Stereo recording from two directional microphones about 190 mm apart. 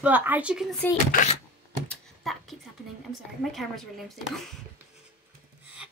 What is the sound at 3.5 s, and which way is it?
Speech, centre (ahead or behind).